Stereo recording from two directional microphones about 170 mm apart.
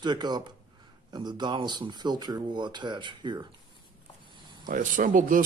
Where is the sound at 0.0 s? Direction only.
25° right (ahead or behind).